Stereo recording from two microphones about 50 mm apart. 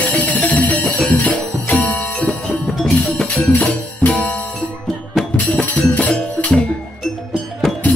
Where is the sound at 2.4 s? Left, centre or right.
Centre.